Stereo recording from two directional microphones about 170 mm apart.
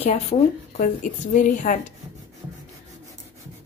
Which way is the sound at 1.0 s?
50° left (ahead or behind).